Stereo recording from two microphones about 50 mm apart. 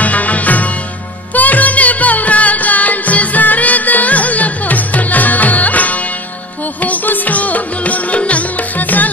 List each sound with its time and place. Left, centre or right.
0.0 s music: left